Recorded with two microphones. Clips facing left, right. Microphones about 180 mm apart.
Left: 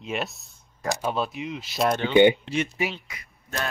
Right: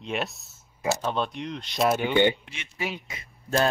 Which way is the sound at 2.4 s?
40° left (ahead or behind).